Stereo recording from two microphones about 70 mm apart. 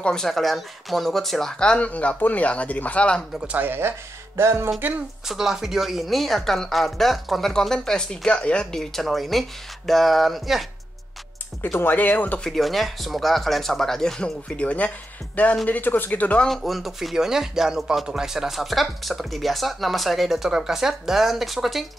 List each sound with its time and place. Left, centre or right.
0.0 s speech: centre
3.3 s speech: right
4.7 s speech: right
5.2 s speech: centre
8.7 s speech: centre
11.6 s speech: left
12.4 s speech: centre
14.6 s speech: left
16.4 s speech: centre